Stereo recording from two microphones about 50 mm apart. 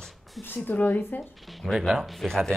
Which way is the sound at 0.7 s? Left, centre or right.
Left.